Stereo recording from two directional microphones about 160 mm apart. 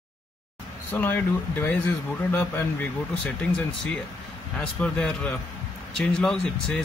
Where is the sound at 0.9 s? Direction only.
10° left (ahead or behind).